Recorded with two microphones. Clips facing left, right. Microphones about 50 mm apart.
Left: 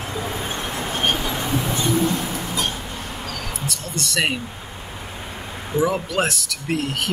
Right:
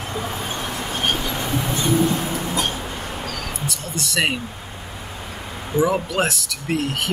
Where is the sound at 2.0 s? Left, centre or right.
Right.